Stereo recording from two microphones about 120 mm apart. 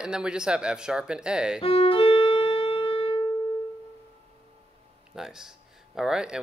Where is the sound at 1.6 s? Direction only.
50° left (ahead or behind).